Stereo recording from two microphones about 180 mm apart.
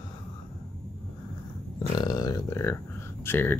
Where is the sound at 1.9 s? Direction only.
20° left (ahead or behind).